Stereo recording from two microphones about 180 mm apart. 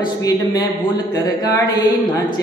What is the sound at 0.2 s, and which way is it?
Music, 20° left (ahead or behind).